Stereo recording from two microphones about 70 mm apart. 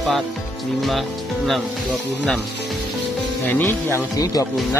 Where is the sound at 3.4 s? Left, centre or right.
Left.